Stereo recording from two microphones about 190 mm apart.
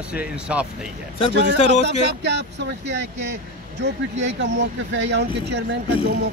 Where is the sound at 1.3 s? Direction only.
65° right (ahead or behind).